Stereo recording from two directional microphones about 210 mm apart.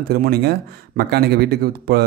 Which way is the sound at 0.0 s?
50° right (ahead or behind).